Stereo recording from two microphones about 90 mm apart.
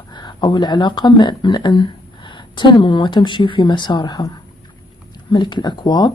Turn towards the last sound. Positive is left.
turn(degrees=55)  # may be behind; listen again after turning